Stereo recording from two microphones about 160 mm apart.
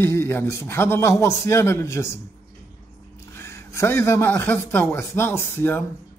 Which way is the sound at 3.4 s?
15° left (ahead or behind).